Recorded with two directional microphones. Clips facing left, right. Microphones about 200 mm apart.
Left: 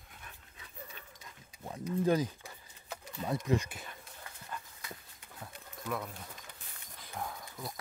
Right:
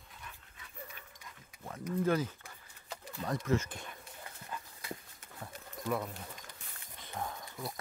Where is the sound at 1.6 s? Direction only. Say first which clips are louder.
Left 2 dB; 15° left (ahead or behind).